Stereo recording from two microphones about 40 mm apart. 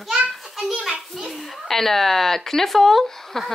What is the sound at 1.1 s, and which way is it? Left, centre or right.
A woman's voice, centre.